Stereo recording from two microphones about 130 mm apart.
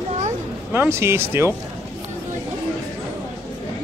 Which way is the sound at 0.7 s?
20° right (ahead or behind).